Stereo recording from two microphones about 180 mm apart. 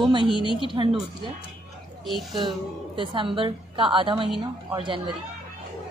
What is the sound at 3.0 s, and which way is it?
A woman's voice, 30° right (ahead or behind).